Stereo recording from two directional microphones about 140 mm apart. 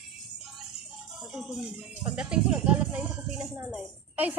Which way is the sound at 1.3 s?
5° right (ahead or behind).